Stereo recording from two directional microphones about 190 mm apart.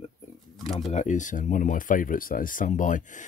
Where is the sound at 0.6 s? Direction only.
30° left (ahead or behind).